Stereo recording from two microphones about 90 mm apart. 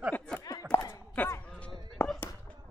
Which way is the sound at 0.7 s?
25° left (ahead or behind).